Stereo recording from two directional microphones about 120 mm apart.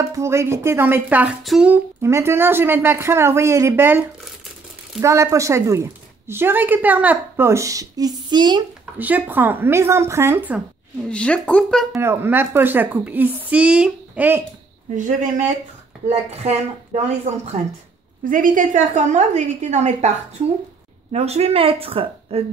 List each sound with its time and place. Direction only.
0.0 s a woman's voice: 25° right (ahead or behind)
1.4 s speech: centre (ahead or behind)
1.7 s a woman's voice: 20° right (ahead or behind)
5.0 s a woman's voice: 25° right (ahead or behind)
8.9 s a woman's voice: 15° right (ahead or behind)
11.1 s speech: 10° left (ahead or behind)
11.9 s a woman's voice: 20° right (ahead or behind)
15.0 s speech: 90° right
16.1 s speech: 60° right (ahead or behind)
18.3 s a woman's voice: 90° right; by 20.1 s 75° right (ahead or behind)
21.1 s speech: 60° right (ahead or behind)